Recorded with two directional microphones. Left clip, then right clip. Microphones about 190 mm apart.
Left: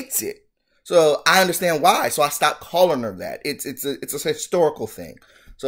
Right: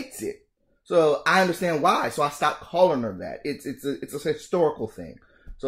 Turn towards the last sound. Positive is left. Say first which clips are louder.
# left 3 dB
turn(degrees=10)  # may be behind; listen again after turning